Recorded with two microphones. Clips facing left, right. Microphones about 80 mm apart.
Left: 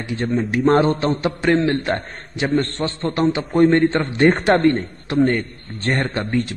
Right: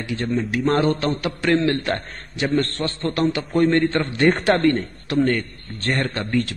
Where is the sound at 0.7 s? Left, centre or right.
Left.